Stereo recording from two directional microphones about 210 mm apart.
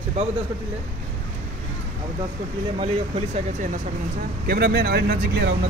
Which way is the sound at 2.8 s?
30° right (ahead or behind).